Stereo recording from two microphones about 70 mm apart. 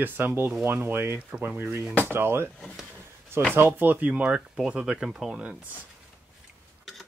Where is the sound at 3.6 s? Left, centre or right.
Right; by 5.5 s centre.